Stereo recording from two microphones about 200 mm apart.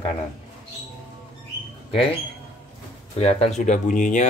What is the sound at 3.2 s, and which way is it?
Speech, 30° left (ahead or behind).